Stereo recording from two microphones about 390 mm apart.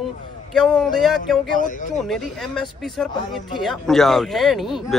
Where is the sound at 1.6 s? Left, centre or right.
Centre.